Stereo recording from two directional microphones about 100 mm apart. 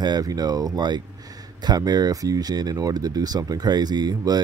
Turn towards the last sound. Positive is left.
turn(degrees=-40)  # may be behind; listen again after turning